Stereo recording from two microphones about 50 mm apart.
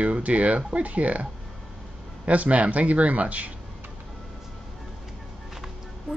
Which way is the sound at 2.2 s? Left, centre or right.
Right.